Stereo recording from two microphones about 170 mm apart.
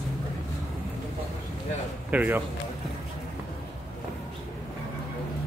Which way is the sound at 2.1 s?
10° right (ahead or behind).